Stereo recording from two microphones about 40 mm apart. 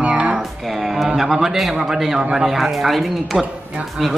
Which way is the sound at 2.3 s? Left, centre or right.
Centre.